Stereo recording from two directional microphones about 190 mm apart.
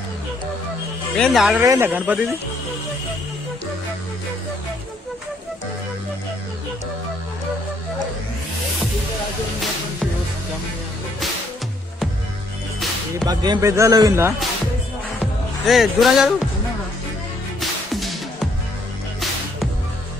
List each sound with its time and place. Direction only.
1.1 s speech: centre (ahead or behind)
1.6 s speech: 15° right (ahead or behind)
13.2 s speech: 20° right (ahead or behind)
15.6 s speech: centre (ahead or behind)
17.6 s music: centre (ahead or behind)